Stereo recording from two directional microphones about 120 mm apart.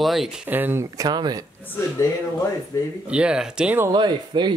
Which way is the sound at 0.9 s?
35° right (ahead or behind).